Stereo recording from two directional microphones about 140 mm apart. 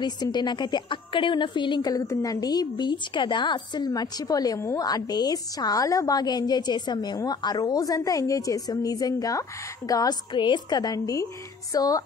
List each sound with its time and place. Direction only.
0.0 s a woman's voice: 30° left (ahead or behind)